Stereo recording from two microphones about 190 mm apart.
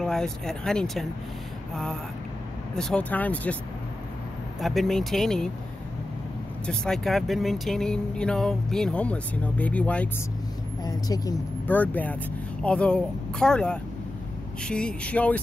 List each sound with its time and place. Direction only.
0.0 s speech: 5° left (ahead or behind)
2.7 s speech: 5° left (ahead or behind)
4.6 s speech: centre (ahead or behind)
6.6 s speech: 5° left (ahead or behind)
10.8 s speech: 20° left (ahead or behind)